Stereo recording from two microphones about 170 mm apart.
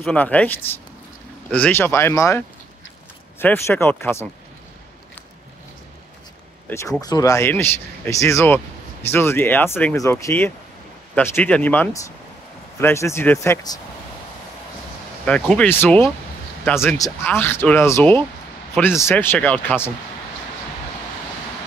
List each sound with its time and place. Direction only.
0.0 s speech: 5° left (ahead or behind)
6.7 s speech: 20° left (ahead or behind)
15.2 s speech: 5° left (ahead or behind)